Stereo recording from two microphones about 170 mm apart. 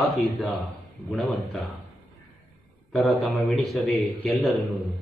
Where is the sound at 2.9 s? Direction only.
Centre (ahead or behind).